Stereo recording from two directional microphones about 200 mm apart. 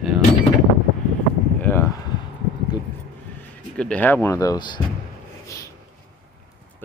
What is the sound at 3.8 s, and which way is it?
Speech, 5° left (ahead or behind).